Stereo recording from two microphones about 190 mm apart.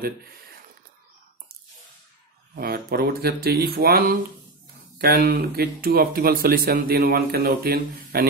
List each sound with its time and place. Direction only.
0.0 s speech: 50° right (ahead or behind)
2.5 s speech: 55° right (ahead or behind)